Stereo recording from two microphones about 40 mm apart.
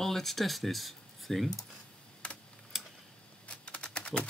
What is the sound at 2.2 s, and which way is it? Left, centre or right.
Typing, left.